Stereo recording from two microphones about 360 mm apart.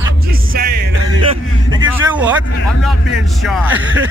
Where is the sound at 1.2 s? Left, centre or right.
Centre.